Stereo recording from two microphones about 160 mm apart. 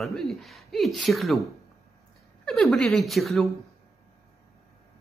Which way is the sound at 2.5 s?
Centre (ahead or behind).